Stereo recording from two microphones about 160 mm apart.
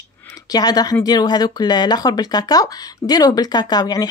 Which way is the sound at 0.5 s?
25° left (ahead or behind).